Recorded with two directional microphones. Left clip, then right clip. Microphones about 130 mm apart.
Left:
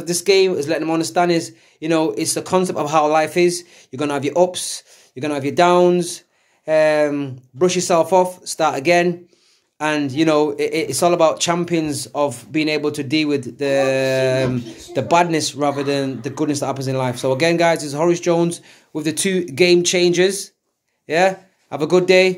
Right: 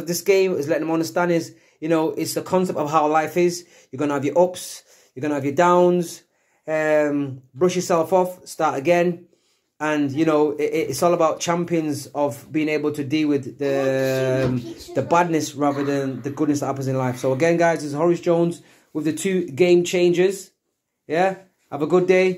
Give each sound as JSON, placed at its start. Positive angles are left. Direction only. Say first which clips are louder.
{"t": 0.0, "sound": "speech", "louder": "left 3 dB", "side_deg": 15}